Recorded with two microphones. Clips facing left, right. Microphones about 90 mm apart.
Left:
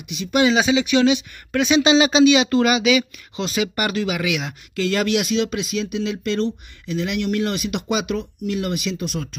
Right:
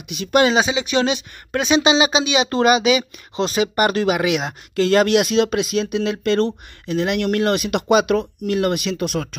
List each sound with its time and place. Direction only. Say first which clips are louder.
0.1 s speech: right 2 dB; 50° right (ahead or behind)
0.6 s speech: left 1 dB; 25° right (ahead or behind)
2.5 s speech: right 1 dB; 30° right (ahead or behind); by 9.3 s 65° right (ahead or behind)